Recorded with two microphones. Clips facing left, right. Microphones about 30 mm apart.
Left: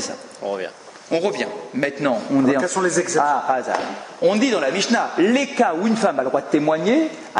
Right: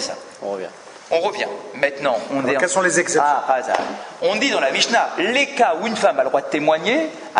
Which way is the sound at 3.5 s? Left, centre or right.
Right.